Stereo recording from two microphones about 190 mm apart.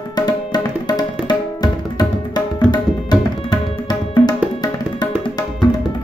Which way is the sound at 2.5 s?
20° left (ahead or behind).